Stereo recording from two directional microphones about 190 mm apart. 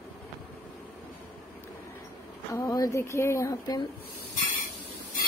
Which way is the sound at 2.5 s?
15° left (ahead or behind).